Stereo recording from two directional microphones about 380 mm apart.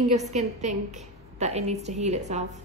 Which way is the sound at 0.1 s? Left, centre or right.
Centre.